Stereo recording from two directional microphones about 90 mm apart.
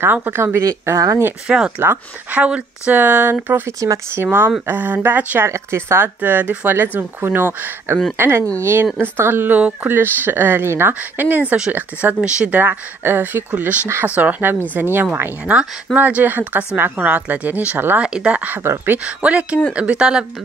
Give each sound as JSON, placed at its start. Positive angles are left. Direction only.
{"t": 0.0, "sound": "speech", "side_deg": -25}
{"t": 1.5, "sound": "speech", "side_deg": -10}
{"t": 3.8, "sound": "speech", "side_deg": -40}
{"t": 4.2, "sound": "speech", "side_deg": -25}
{"t": 12.5, "sound": "speech", "side_deg": -20}
{"t": 19.0, "sound": "speech", "side_deg": -15}